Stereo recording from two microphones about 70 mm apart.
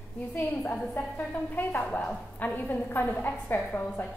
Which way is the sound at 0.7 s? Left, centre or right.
Left.